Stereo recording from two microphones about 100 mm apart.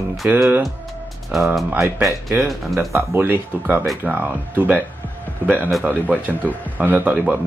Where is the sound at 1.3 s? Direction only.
Centre (ahead or behind).